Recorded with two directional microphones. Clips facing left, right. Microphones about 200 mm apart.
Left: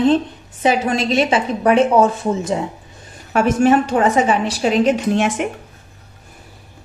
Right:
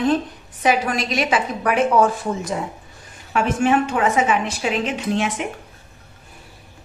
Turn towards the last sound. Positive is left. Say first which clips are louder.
# left 5 dB
turn(degrees=45)  # may be behind; listen again after turning